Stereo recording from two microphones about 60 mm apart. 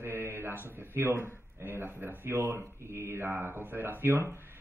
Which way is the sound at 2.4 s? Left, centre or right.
Right.